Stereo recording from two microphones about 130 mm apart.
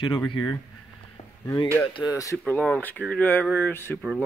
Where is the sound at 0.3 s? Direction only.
30° left (ahead or behind).